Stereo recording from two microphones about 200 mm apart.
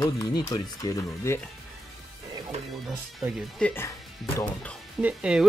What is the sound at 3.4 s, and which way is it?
Speech, 5° left (ahead or behind).